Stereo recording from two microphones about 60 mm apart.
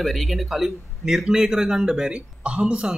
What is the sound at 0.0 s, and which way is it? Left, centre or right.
A man's voice, centre.